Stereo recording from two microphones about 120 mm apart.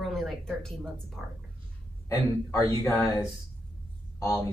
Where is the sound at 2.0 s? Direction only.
25° left (ahead or behind).